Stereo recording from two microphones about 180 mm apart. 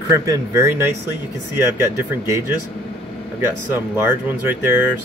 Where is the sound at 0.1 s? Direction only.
15° right (ahead or behind).